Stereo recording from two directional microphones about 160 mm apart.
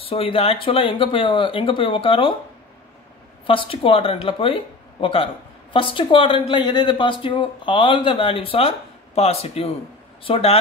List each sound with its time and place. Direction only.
0.0 s speech: 35° left (ahead or behind)
3.4 s speech: 35° left (ahead or behind)